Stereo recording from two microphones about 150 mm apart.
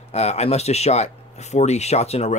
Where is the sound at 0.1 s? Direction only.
45° left (ahead or behind).